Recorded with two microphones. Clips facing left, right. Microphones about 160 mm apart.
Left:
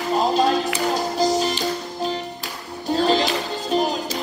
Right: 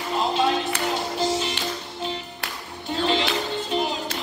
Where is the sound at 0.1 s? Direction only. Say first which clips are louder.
Left 4 dB; 40° left (ahead or behind).